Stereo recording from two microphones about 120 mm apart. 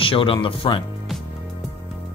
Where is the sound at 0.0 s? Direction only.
50° left (ahead or behind).